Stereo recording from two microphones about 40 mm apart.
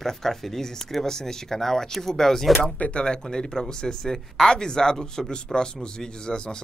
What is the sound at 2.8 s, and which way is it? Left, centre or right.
Speech, left.